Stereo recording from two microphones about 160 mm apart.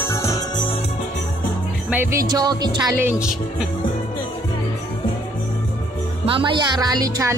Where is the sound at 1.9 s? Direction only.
15° right (ahead or behind).